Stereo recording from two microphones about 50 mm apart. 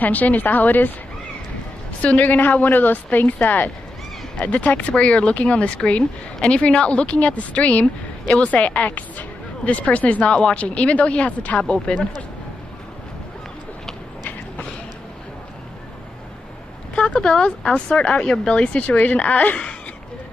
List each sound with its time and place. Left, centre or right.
0.0 s a woman's voice: left
2.0 s a woman's voice: left
16.9 s a woman's voice: centre
18.6 s a woman's voice: left